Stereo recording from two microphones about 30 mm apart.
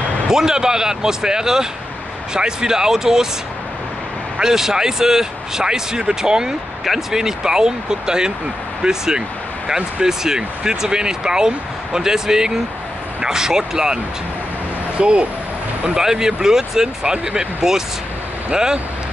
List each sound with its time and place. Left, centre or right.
0.3 s speech: centre
4.4 s speech: centre
6.8 s speech: centre
7.2 s speech: centre
15.0 s speech: right
16.0 s speech: centre
17.1 s speech: right